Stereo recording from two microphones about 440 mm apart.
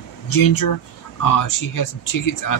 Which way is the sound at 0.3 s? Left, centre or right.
Left.